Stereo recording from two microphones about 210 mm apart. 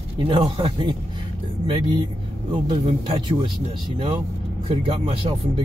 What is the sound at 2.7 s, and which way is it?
Speech, 25° right (ahead or behind).